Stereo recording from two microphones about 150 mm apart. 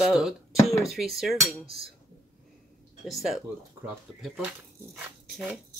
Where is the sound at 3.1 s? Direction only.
Centre (ahead or behind).